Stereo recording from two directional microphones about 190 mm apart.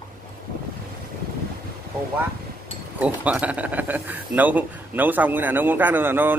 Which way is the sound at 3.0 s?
5° right (ahead or behind).